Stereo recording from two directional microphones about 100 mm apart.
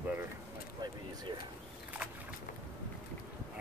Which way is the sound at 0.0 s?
20° right (ahead or behind).